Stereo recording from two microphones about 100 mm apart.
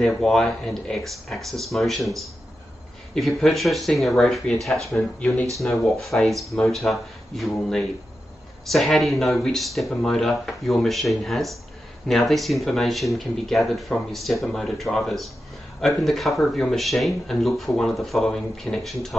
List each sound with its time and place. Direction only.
0.0 s speech: 5° left (ahead or behind)